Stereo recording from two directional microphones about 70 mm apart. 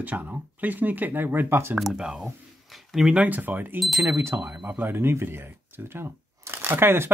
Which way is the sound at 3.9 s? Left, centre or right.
Right.